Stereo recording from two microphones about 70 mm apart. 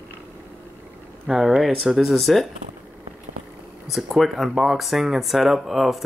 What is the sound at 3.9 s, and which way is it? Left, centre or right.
Speech, centre.